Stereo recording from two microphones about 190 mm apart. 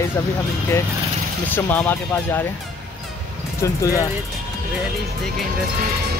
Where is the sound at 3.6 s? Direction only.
15° left (ahead or behind).